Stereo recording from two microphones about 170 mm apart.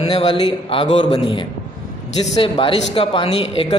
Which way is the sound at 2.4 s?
30° left (ahead or behind).